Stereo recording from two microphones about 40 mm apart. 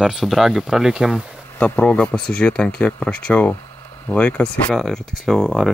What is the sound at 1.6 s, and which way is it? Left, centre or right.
Speech, left.